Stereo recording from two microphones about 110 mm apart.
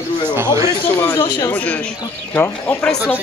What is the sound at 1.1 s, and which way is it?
Speech, 40° left (ahead or behind).